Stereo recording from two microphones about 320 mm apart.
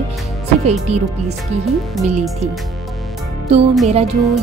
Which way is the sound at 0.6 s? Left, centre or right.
Centre.